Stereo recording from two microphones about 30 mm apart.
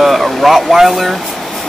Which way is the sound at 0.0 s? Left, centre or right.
Centre.